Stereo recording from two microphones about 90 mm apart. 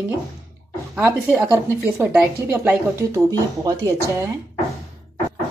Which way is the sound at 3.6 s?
40° right (ahead or behind).